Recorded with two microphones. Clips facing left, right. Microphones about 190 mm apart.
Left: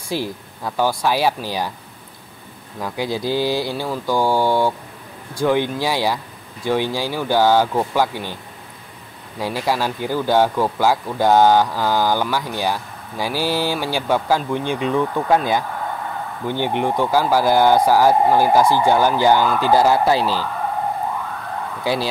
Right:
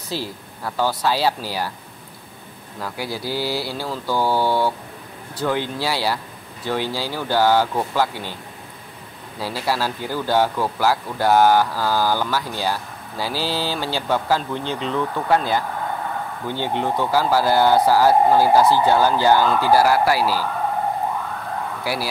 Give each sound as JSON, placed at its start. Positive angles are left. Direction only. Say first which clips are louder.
{"t": 0.1, "sound": "speech", "louder": "left 4 dB", "side_deg": 15}
{"t": 2.8, "sound": "speech", "louder": "left 5 dB", "side_deg": 20}
{"t": 9.4, "sound": "speech", "louder": "left 2 dB", "side_deg": 15}